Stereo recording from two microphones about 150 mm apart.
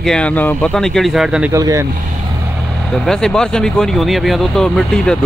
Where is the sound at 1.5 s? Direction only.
20° right (ahead or behind).